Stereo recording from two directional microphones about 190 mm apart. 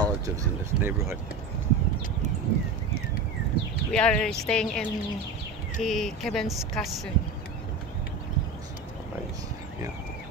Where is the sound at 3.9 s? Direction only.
5° left (ahead or behind).